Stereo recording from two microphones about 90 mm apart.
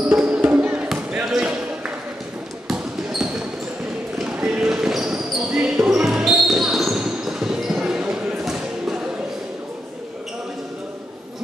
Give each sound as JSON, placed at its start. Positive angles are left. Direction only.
{"t": 0.0, "sound": "music", "side_deg": -15}
{"t": 1.1, "sound": "basketball bounce", "side_deg": -10}